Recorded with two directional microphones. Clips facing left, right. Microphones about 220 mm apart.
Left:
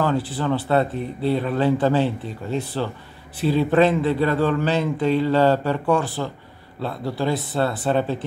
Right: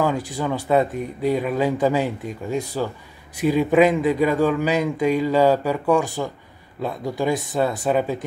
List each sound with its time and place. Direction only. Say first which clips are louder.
0.3 s a man's voice: even; 10° right (ahead or behind)